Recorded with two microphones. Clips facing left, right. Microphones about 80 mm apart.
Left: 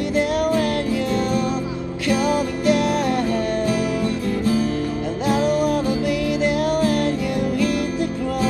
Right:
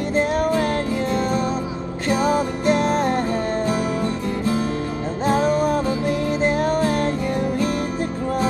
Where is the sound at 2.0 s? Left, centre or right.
Right.